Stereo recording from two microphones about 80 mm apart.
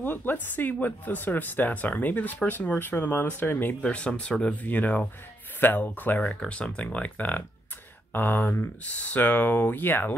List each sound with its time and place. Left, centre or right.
0.0 s speech: left
3.8 s speech: centre
6.2 s speech: centre